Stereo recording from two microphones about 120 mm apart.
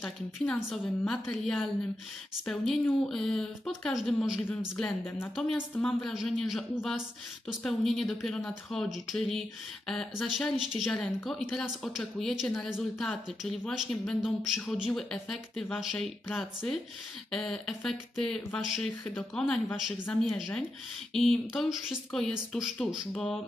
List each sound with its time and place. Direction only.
0.7 s speech: 5° left (ahead or behind)